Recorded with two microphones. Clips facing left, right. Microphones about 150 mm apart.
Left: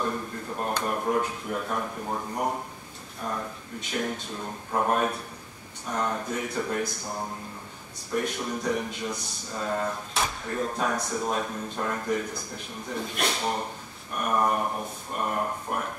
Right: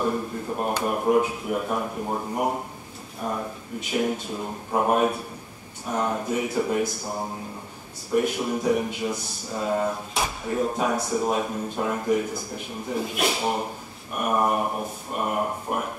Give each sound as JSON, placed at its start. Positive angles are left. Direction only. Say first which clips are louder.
{"t": 0.0, "sound": "a man's voice", "louder": "right 5 dB", "side_deg": -10}